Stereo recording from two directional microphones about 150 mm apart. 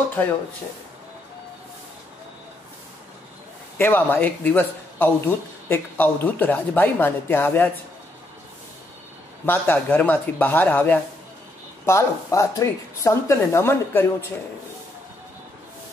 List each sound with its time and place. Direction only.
3.7 s speech: 15° left (ahead or behind)
9.5 s speech: 15° left (ahead or behind)